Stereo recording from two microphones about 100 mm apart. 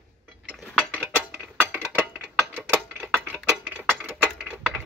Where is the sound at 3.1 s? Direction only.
20° right (ahead or behind).